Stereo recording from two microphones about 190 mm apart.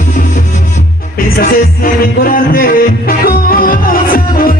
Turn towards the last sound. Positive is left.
turn(degrees=50)  # may be behind; listen again after turning